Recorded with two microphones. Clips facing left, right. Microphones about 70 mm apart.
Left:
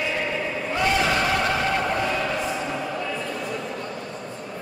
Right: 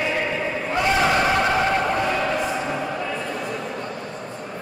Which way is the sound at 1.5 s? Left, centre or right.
Centre.